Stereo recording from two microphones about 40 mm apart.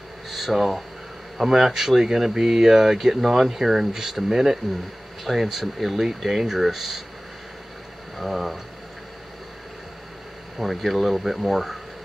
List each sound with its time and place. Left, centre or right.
0.3 s speech: centre
8.2 s speech: centre
10.6 s speech: centre